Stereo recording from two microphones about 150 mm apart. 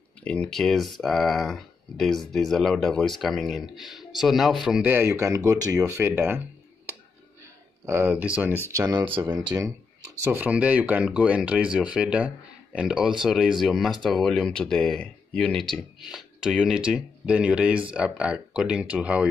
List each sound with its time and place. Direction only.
0.2 s speech: 5° left (ahead or behind); by 6.4 s 15° right (ahead or behind)
7.8 s speech: 15° right (ahead or behind)
8.6 s speech: 25° right (ahead or behind)
10.2 s speech: 10° right (ahead or behind)